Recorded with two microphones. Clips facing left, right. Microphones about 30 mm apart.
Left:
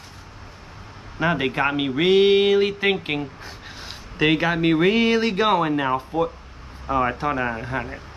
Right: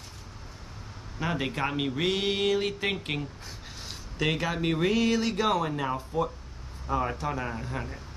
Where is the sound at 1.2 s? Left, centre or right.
Left.